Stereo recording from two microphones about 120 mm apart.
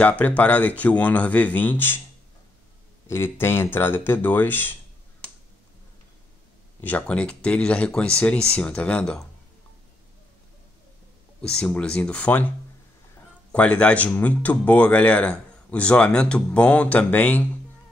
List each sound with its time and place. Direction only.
0.4 s speech: 10° left (ahead or behind)
3.1 s speech: 20° left (ahead or behind)
6.8 s speech: 10° left (ahead or behind)
11.4 s speech: 5° left (ahead or behind)
13.5 s speech: 10° left (ahead or behind)